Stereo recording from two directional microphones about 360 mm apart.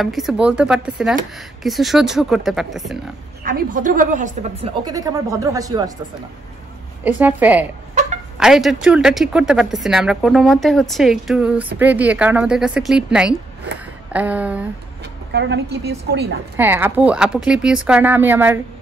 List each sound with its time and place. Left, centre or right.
0.0 s speech: centre
3.4 s a woman's voice: right
7.1 s speech: centre
15.3 s a woman's voice: right
16.5 s speech: centre